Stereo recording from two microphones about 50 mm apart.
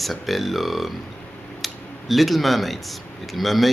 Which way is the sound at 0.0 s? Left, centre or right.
Centre.